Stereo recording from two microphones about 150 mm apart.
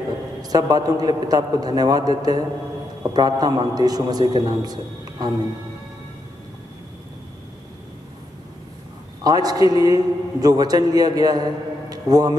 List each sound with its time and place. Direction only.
0.4 s a man's voice: 25° right (ahead or behind)
9.2 s a man's voice: 25° right (ahead or behind)